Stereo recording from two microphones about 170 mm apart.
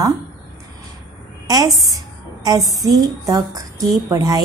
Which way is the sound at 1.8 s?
20° right (ahead or behind).